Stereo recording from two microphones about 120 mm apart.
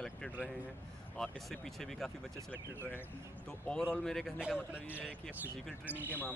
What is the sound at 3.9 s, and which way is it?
Speech, 5° left (ahead or behind).